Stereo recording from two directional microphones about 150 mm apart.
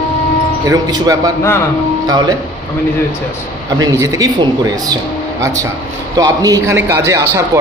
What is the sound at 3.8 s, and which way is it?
Speech, 25° right (ahead or behind).